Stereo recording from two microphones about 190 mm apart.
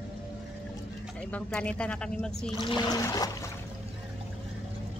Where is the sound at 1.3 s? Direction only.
5° left (ahead or behind).